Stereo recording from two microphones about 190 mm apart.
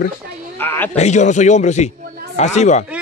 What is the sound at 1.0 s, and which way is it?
A man's voice, 40° left (ahead or behind).